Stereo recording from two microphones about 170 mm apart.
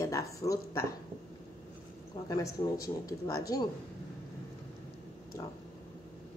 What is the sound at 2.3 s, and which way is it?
Speech, 20° left (ahead or behind).